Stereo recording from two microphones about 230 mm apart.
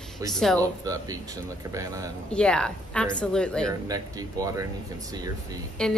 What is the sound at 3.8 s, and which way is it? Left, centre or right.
Speech, centre.